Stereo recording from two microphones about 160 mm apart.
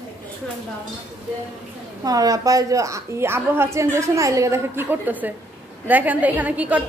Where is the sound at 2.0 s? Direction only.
20° right (ahead or behind).